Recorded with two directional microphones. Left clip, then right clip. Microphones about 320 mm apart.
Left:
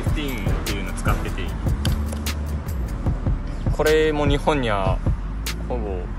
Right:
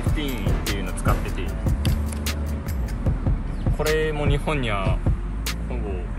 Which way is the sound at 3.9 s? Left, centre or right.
Left.